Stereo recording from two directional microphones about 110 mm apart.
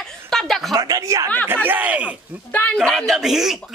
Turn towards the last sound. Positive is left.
turn(degrees=-5)  # may be behind; listen again after turning